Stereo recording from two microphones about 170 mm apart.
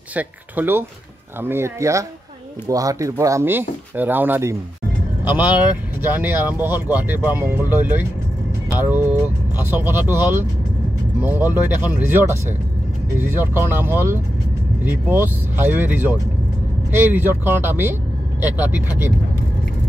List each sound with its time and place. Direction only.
0.1 s speech: 10° right (ahead or behind)